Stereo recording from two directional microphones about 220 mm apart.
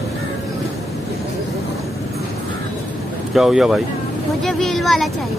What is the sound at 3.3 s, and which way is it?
A man's voice, centre (ahead or behind).